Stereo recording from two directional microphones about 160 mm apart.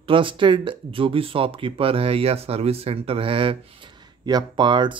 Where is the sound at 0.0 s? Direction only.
30° right (ahead or behind).